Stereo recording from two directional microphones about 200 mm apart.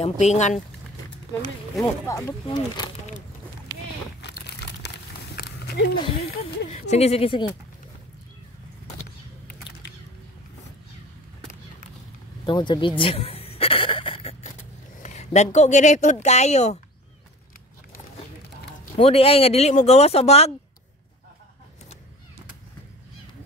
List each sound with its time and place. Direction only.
0.0 s speech: 35° left (ahead or behind)
1.8 s speech: 15° left (ahead or behind)
4.2 s crumpling: 55° left (ahead or behind)
5.9 s speech: 25° left (ahead or behind)
12.4 s a sound: 20° left (ahead or behind)
15.0 s speech: 35° left (ahead or behind)
18.9 s speech: 30° left (ahead or behind)